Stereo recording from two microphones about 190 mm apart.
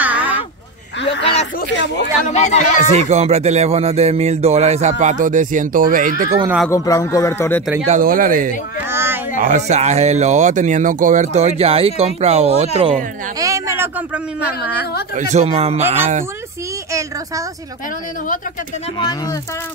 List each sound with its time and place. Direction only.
0.0 s a sound: 10° right (ahead or behind)
1.2 s speech: 35° left (ahead or behind)
2.9 s speech: 35° right (ahead or behind)
6.4 s speech: 5° right (ahead or behind)
6.7 s a man's voice: 15° left (ahead or behind)
7.8 s speech: 40° right (ahead or behind)
8.9 s a sound: 10° right (ahead or behind)
9.4 s speech: 40° right (ahead or behind)
13.4 s speech: 15° right (ahead or behind)
15.1 s speech: 35° right (ahead or behind)